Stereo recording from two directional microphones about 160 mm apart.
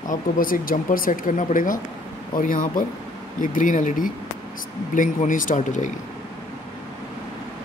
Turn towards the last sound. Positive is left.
turn(degrees=50)  # may be behind; listen again after turning